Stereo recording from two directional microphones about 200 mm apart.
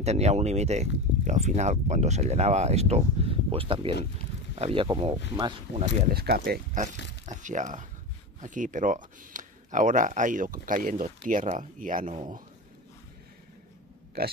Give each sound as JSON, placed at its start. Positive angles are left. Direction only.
{"t": 0.0, "sound": "speech", "side_deg": -35}
{"t": 6.1, "sound": "speech", "side_deg": -50}
{"t": 14.2, "sound": "speech", "side_deg": -50}